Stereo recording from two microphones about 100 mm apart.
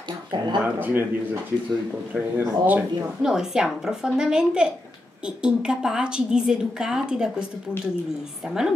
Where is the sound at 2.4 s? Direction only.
20° right (ahead or behind).